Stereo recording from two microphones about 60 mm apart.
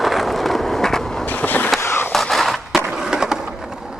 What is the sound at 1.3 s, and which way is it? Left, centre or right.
Vehicle, left.